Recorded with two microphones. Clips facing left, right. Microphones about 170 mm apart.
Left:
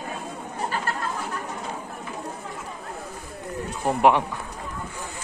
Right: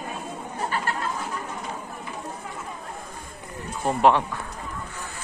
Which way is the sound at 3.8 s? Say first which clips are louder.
Even; 15° left (ahead or behind).